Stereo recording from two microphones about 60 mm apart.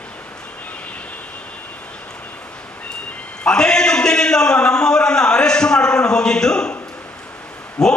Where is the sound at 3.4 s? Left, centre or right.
Centre.